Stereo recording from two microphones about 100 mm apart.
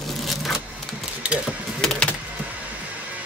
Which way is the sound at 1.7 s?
10° left (ahead or behind).